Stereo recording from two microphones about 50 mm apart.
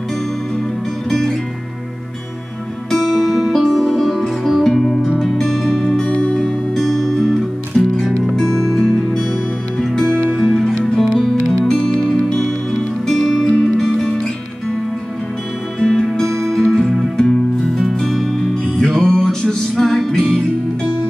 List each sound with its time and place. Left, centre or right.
2.9 s music: centre
6.1 s music: left
6.7 s music: centre
15.8 s music: centre
18.0 s music: centre